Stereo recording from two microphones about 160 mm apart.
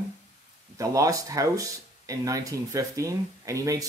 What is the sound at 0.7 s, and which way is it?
Speech, 20° right (ahead or behind).